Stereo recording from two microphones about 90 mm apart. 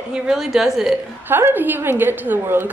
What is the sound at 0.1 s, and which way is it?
Speech, 5° right (ahead or behind).